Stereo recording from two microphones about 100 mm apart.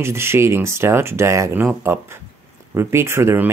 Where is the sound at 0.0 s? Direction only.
25° right (ahead or behind).